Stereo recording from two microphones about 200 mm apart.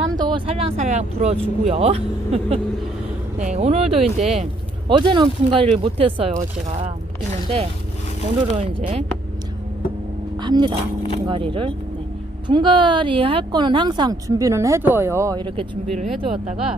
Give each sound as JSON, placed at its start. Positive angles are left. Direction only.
{"t": 0.1, "sound": "speech", "side_deg": -20}
{"t": 8.5, "sound": "speech", "side_deg": -30}
{"t": 10.4, "sound": "speech", "side_deg": -25}